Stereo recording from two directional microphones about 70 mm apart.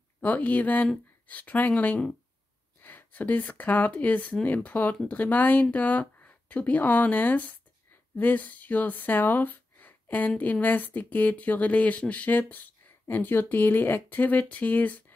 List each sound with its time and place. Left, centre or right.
0.2 s speech: left